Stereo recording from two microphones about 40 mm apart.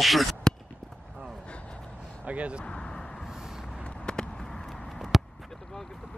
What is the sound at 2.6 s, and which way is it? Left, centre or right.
Speech, left.